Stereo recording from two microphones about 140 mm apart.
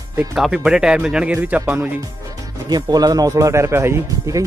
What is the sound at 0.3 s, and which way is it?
Speech, 5° right (ahead or behind).